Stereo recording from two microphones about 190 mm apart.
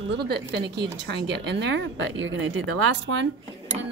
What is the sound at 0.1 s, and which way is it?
Speech, 60° right (ahead or behind).